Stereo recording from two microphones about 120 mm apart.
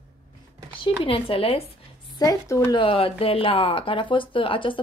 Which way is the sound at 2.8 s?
50° left (ahead or behind).